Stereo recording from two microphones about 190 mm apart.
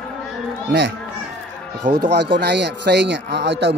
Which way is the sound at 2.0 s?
60° right (ahead or behind).